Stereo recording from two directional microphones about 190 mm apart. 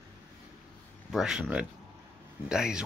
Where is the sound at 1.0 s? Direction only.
Centre (ahead or behind).